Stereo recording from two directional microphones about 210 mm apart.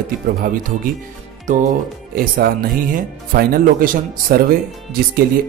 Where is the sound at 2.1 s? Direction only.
45° right (ahead or behind).